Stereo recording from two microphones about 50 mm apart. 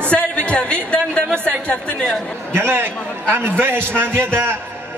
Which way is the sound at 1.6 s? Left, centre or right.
Left.